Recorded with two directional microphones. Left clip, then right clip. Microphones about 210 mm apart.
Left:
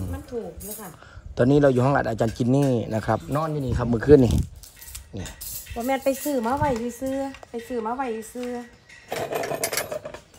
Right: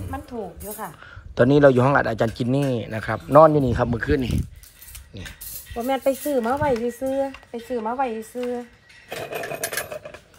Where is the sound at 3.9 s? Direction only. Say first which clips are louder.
Left 8 dB; 20° left (ahead or behind).